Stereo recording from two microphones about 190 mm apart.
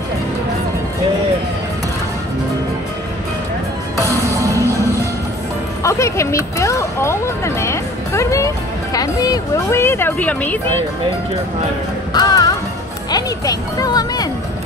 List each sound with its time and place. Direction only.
4.0 s music: 15° right (ahead or behind)
5.8 s speech: 15° left (ahead or behind)
12.1 s music: 20° left (ahead or behind)
13.1 s speech: 20° left (ahead or behind)